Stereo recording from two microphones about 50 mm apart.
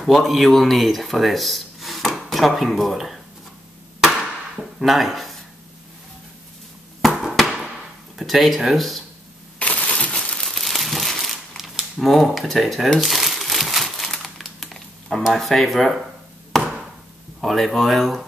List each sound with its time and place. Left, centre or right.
0.0 s speech: centre
4.0 s hammer: centre
7.0 s a sound: centre
8.2 s speech: centre
9.6 s crushing: left
10.5 s crumpling: centre
15.2 s speech: centre
17.4 s speech: centre